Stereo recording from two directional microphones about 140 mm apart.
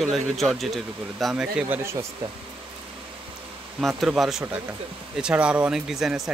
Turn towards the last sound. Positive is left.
turn(degrees=0)  # may be behind; listen again after turning